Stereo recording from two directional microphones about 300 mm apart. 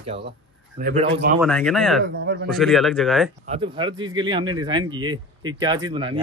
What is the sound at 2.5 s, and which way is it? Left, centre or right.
Speech, centre.